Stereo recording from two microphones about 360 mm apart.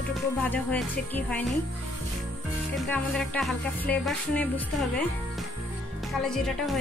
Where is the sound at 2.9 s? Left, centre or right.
Centre.